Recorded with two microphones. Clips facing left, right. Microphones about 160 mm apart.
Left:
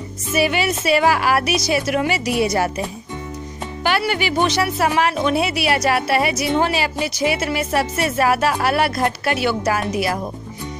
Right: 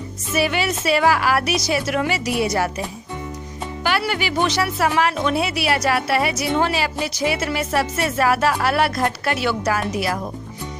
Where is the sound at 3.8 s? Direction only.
20° left (ahead or behind).